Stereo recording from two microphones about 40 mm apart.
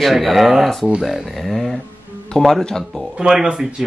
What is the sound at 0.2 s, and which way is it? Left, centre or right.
Speech, centre.